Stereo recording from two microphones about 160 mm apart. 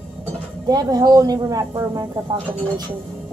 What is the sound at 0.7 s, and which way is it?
Speech, 25° right (ahead or behind).